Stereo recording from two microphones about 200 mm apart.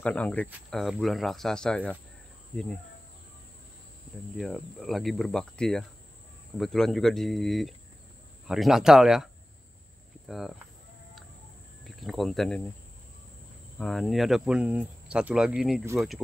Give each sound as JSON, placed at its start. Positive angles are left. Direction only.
{"t": 0.0, "sound": "speech", "side_deg": 5}
{"t": 4.4, "sound": "speech", "side_deg": 0}
{"t": 11.8, "sound": "speech", "side_deg": 0}
{"t": 13.7, "sound": "speech", "side_deg": 0}